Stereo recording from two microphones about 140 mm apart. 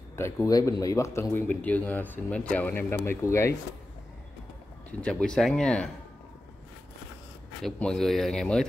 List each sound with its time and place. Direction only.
0.1 s speech: 20° left (ahead or behind)
5.0 s speech: 5° left (ahead or behind)
7.6 s speech: 5° left (ahead or behind)